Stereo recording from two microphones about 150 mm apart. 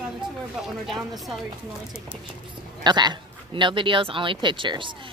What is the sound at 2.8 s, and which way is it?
Speech, 30° right (ahead or behind).